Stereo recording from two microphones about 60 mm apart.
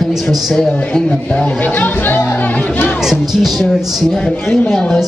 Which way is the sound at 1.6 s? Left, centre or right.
Left.